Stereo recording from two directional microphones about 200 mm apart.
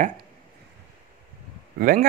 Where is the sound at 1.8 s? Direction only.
45° right (ahead or behind).